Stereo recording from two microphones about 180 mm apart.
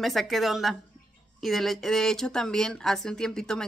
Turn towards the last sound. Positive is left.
turn(degrees=5)  # may be behind; listen again after turning